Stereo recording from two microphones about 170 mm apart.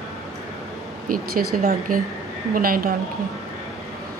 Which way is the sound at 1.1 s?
55° right (ahead or behind).